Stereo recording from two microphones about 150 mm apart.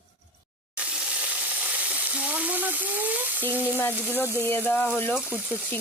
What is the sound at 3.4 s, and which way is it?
Speech, 15° left (ahead or behind).